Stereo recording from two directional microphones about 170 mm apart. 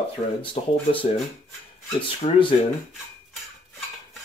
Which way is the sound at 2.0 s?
30° left (ahead or behind).